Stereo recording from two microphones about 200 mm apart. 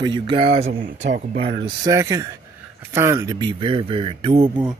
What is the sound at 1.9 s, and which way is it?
Speech, 15° right (ahead or behind).